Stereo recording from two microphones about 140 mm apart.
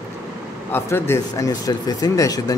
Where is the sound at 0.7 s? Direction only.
15° left (ahead or behind).